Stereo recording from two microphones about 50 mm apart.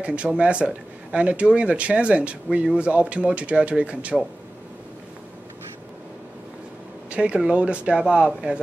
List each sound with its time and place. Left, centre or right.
0.0 s speech: right
7.1 s speech: centre